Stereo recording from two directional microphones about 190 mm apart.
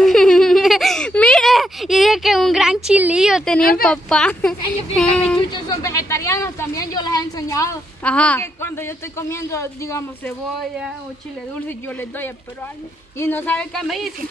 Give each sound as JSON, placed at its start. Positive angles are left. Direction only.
{"t": 0.0, "sound": "a sound", "side_deg": 5}
{"t": 3.8, "sound": "speech", "side_deg": 5}
{"t": 5.5, "sound": "speech", "side_deg": 20}
{"t": 8.1, "sound": "speech", "side_deg": 5}
{"t": 11.6, "sound": "speech", "side_deg": 10}